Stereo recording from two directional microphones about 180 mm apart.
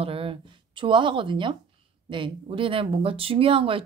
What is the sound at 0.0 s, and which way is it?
A woman's voice, 30° right (ahead or behind).